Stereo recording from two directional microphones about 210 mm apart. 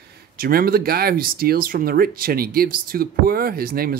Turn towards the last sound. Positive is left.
turn(degrees=-45)  # may be behind; listen again after turning